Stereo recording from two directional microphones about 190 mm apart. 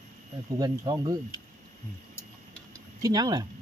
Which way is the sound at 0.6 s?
20° right (ahead or behind).